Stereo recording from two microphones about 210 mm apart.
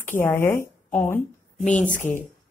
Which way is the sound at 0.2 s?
10° left (ahead or behind).